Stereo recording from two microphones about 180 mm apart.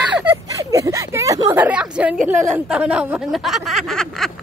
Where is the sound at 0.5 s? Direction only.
15° right (ahead or behind); by 4.3 s centre (ahead or behind).